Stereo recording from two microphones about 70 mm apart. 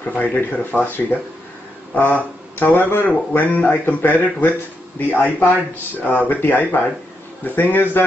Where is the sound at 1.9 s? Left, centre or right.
Left.